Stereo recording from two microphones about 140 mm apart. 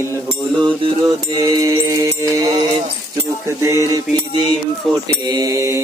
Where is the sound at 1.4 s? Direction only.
20° right (ahead or behind).